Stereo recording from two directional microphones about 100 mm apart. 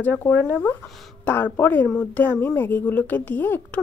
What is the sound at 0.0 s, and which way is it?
Speech, 20° left (ahead or behind).